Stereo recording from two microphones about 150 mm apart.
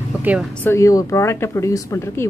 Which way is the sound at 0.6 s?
20° left (ahead or behind).